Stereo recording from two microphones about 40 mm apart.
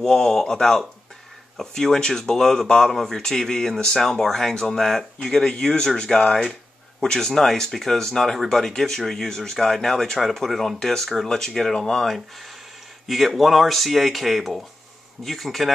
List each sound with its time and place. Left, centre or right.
0.0 s a man's voice: centre